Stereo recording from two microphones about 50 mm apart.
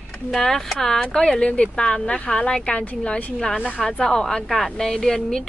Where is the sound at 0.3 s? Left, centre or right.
Centre; by 3.8 s left.